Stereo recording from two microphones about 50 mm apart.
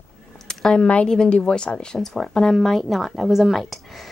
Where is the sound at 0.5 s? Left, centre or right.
Centre.